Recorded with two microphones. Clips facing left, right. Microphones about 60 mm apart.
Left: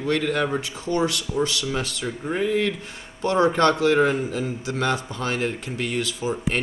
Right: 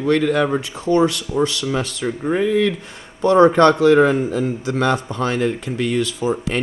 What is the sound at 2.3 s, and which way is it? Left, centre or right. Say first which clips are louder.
Speech: right 5 dB; right.